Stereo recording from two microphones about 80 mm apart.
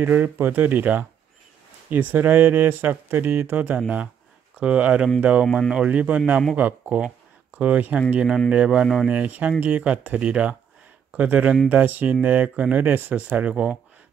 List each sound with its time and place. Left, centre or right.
0.0 s speech: right